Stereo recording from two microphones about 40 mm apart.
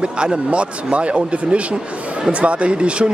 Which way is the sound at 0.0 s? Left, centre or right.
Right.